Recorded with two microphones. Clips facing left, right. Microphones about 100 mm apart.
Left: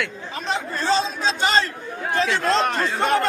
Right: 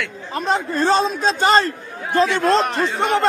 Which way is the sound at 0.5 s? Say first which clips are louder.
Right 5 dB; 50° right (ahead or behind).